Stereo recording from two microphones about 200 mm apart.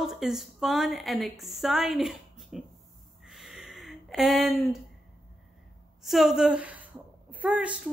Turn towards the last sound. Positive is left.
turn(degrees=-5)  # may be behind; listen again after turning